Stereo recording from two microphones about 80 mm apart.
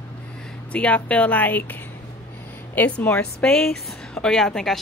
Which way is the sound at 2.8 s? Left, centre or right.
Centre.